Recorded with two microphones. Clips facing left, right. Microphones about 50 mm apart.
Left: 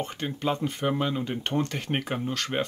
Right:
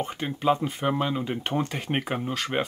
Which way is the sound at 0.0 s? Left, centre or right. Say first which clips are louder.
Right 3 dB; centre.